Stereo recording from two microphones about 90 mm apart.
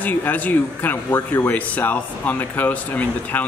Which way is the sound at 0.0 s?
20° left (ahead or behind).